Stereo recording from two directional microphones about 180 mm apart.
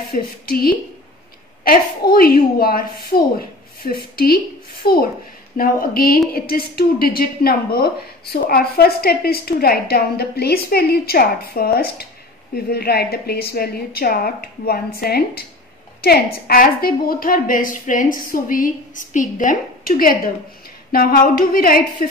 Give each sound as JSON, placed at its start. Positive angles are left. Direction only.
{"t": 0.1, "sound": "a woman's voice", "side_deg": 50}